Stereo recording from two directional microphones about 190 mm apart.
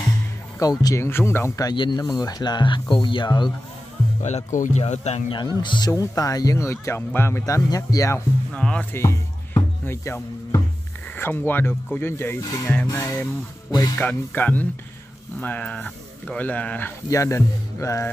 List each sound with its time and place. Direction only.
0.6 s speech: 20° left (ahead or behind)
4.2 s speech: 35° left (ahead or behind)
5.6 s speech: 25° left (ahead or behind)
8.5 s speech: 5° left (ahead or behind)